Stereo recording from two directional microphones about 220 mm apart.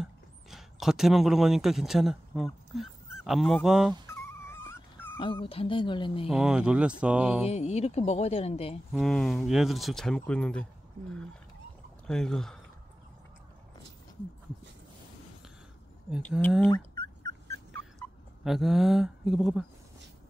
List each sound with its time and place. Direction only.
0.0 s speech: centre (ahead or behind)
4.1 s dog: 10° left (ahead or behind)
5.2 s speech: 25° left (ahead or behind)
6.2 s speech: 5° right (ahead or behind)
7.4 s speech: 30° left (ahead or behind)
8.9 s speech: centre (ahead or behind)
12.1 s speech: centre (ahead or behind)
16.2 s speech: 10° left (ahead or behind)
17.7 s a sound: centre (ahead or behind)